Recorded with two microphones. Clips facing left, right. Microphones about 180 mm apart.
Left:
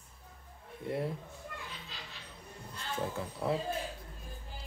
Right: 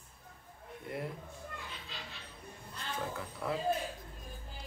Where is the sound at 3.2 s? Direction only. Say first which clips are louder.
Left 4 dB; 25° left (ahead or behind).